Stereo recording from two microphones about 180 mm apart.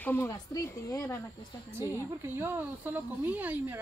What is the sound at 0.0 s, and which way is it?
Speech, 10° left (ahead or behind).